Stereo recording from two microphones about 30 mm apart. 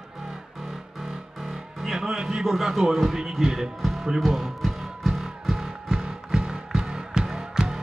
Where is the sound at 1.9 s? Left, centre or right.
Centre.